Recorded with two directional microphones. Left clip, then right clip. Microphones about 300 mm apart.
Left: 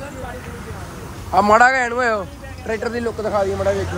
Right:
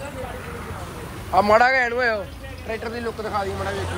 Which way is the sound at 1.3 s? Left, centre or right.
Centre.